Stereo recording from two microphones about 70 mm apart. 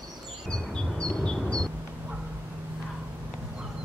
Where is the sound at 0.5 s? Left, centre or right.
Centre.